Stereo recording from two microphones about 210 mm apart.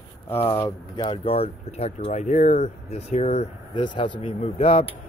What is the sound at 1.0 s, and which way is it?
Speech, 25° left (ahead or behind).